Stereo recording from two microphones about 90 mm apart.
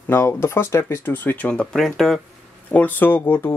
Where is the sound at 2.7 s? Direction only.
20° left (ahead or behind).